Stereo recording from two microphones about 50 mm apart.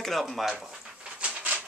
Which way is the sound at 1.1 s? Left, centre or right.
Right.